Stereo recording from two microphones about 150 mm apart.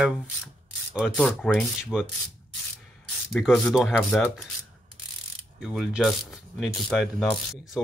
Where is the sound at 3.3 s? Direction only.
Centre (ahead or behind).